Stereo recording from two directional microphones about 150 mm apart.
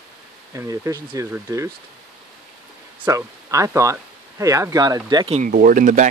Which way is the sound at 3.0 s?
20° right (ahead or behind).